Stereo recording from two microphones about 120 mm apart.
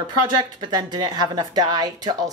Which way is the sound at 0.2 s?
35° right (ahead or behind).